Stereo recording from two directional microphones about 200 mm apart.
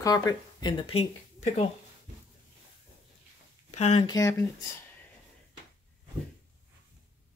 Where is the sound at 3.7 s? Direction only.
35° left (ahead or behind).